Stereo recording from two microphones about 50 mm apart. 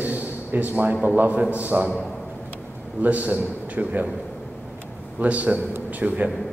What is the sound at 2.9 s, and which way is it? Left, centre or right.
A man's voice, right.